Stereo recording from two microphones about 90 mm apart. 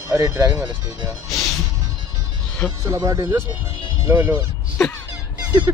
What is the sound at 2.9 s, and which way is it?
Speech, 40° right (ahead or behind).